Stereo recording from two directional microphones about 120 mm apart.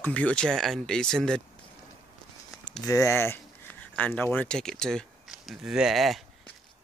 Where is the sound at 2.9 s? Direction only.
25° left (ahead or behind); by 6.2 s centre (ahead or behind).